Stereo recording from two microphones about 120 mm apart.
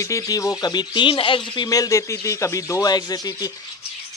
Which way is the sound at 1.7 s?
30° left (ahead or behind).